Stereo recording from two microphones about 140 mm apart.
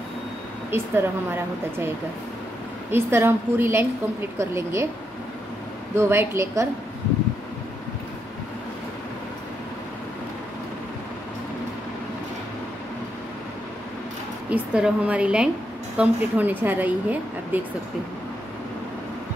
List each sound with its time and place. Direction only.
0.7 s a woman's voice: 15° right (ahead or behind)
2.9 s a woman's voice: 15° right (ahead or behind)
5.9 s a woman's voice: 15° right (ahead or behind)
14.5 s a woman's voice: 10° right (ahead or behind)